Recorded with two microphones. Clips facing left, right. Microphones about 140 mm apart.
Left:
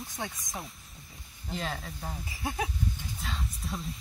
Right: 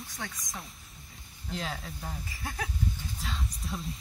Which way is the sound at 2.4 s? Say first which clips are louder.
Left 5 dB; 20° left (ahead or behind).